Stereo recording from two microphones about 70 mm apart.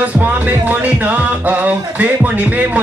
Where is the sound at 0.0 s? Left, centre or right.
Right.